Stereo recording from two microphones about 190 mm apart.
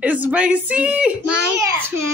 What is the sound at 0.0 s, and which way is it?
Speech, 10° right (ahead or behind).